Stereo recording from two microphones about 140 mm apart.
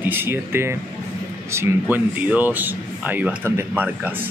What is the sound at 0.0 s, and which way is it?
Speech, 15° right (ahead or behind).